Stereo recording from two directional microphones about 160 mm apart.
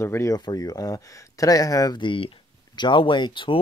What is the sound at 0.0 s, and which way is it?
Speech, 15° left (ahead or behind).